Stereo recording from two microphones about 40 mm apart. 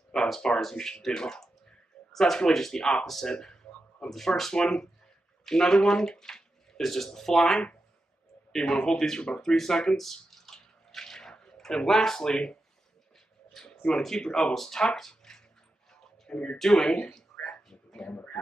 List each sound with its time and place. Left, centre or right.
0.1 s speech: centre
4.6 s speech: centre
9.4 s drip: centre
13.8 s speech: centre
15.0 s a sound: centre
15.9 s a sound: left
16.5 s speech: centre
18.0 s speech: left